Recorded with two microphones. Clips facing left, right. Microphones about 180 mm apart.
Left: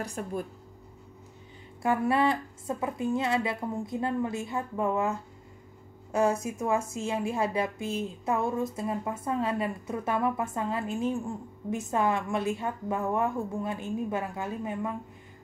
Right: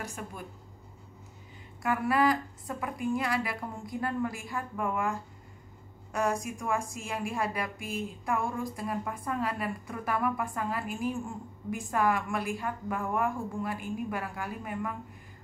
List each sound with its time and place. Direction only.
1.8 s a woman's voice: 30° left (ahead or behind)